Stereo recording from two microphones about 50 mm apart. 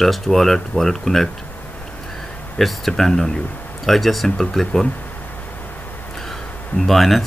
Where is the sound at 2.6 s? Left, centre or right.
Centre.